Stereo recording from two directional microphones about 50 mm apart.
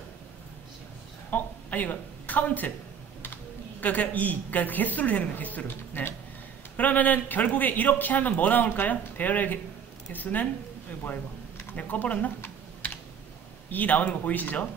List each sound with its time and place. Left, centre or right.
1.3 s speech: left
3.8 s a man's voice: left
5.7 s speech: left
6.8 s a man's voice: left
13.7 s a man's voice: left